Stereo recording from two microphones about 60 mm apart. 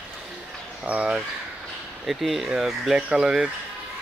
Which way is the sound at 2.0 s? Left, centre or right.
Centre.